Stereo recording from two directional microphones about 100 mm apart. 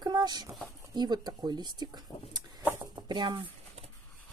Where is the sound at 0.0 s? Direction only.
45° right (ahead or behind).